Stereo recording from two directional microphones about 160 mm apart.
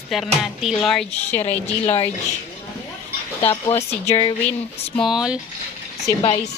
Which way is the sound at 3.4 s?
35° left (ahead or behind).